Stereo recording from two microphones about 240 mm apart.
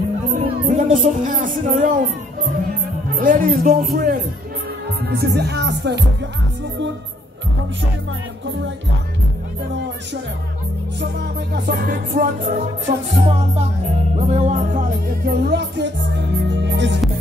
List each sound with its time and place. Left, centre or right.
0.3 s speech: right
3.1 s speech: right
3.9 s music: right
5.0 s speech: right
11.0 s music: right
14.1 s speech: right